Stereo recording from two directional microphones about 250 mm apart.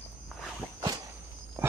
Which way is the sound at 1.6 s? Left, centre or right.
Centre.